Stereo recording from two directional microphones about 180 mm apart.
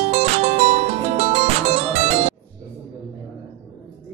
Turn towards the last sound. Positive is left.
turn(degrees=-35)  # may be behind; listen again after turning